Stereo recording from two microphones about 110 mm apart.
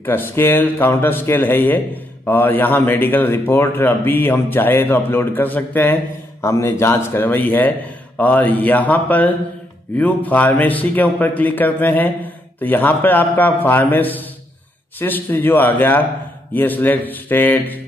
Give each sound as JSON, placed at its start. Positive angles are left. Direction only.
{"t": 0.0, "sound": "a man's voice", "side_deg": 20}